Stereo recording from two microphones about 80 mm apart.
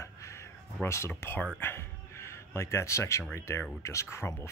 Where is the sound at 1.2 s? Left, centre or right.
Left.